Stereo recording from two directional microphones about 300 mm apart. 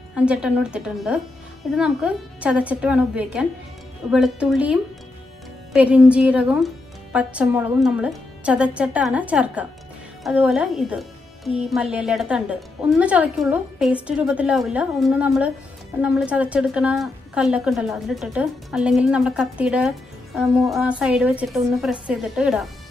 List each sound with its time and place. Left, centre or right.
0.1 s speech: centre